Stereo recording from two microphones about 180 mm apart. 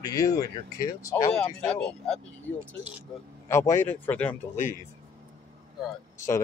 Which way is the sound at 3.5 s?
15° left (ahead or behind).